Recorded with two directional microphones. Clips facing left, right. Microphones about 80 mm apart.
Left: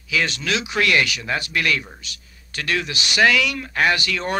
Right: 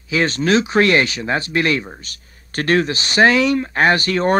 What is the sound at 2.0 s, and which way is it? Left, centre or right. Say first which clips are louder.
Speech: right 1 dB; right.